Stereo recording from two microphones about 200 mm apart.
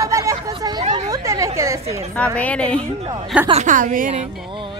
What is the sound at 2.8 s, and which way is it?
A man's voice, 30° right (ahead or behind).